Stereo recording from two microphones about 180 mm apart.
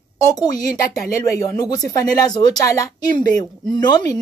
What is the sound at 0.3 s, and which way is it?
A woman's voice, 20° left (ahead or behind).